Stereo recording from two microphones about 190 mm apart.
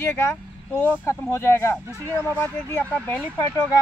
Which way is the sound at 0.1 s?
10° left (ahead or behind).